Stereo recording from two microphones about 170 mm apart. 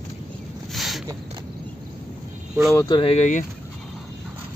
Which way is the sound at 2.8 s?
30° left (ahead or behind).